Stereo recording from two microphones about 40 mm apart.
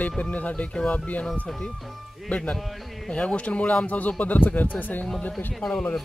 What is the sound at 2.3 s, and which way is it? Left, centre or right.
Speech, left.